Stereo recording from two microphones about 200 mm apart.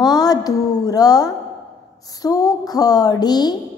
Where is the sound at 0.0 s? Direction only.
20° left (ahead or behind).